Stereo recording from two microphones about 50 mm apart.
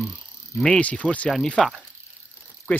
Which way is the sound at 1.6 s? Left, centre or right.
Centre.